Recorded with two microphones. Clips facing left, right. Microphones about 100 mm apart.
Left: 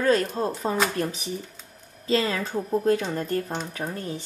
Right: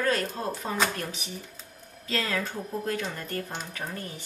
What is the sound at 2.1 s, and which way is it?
Speech, 35° left (ahead or behind).